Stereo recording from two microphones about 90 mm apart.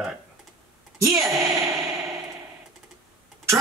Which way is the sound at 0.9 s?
35° right (ahead or behind).